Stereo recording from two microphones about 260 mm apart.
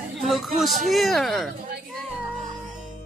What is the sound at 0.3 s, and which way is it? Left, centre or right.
Speech, centre.